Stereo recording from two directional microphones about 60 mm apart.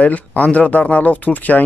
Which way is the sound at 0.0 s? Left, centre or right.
Left.